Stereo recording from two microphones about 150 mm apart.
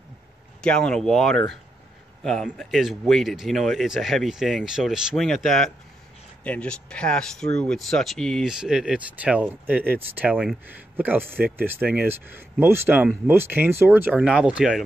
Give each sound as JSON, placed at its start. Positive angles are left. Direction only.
{"t": 0.6, "sound": "speech", "side_deg": 5}